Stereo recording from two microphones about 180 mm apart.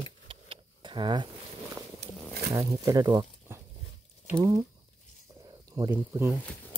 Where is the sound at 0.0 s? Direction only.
30° right (ahead or behind).